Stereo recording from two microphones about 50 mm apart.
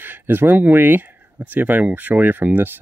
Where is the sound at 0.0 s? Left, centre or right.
Right.